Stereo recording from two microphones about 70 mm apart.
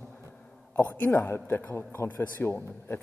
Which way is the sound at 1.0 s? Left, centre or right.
Left.